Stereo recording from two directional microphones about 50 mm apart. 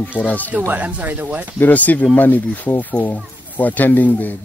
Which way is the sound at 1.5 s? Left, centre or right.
Left.